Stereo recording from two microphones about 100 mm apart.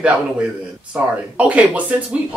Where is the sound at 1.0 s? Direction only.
15° right (ahead or behind).